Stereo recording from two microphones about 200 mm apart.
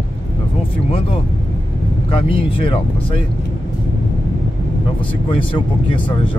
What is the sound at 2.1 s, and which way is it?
Speech, 25° left (ahead or behind).